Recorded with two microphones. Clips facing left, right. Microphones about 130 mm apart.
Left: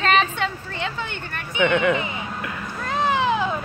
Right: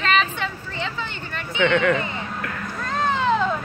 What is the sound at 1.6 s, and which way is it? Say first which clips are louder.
Cat: even; 15° left (ahead or behind).